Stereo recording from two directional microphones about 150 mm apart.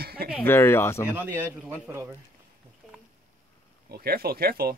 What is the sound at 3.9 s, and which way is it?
Speech, 90° right.